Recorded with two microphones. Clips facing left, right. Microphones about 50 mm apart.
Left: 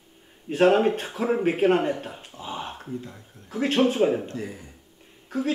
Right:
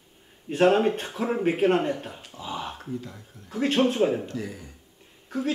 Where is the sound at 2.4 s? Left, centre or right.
Centre.